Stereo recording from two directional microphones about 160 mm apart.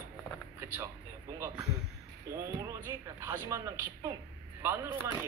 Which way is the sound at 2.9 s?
20° right (ahead or behind).